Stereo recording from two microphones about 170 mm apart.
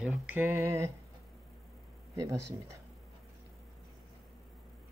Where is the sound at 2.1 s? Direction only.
20° right (ahead or behind).